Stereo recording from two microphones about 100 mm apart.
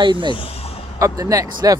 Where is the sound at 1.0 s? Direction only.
35° right (ahead or behind).